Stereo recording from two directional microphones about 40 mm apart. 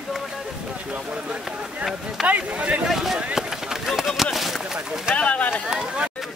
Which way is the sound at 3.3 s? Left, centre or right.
Centre.